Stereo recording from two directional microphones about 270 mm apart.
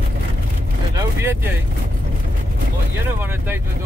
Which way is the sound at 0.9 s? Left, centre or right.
Centre.